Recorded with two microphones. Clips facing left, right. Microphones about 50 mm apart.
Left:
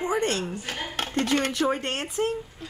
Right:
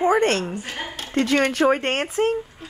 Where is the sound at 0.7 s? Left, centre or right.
Centre.